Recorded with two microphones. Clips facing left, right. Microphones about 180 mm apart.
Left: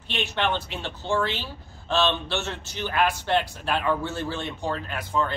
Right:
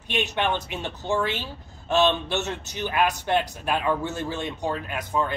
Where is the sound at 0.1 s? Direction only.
15° right (ahead or behind).